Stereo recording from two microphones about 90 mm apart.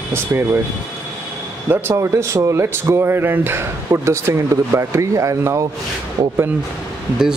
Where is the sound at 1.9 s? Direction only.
35° right (ahead or behind).